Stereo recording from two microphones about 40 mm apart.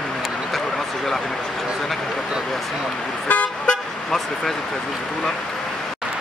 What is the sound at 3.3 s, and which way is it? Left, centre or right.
Vehicle, left.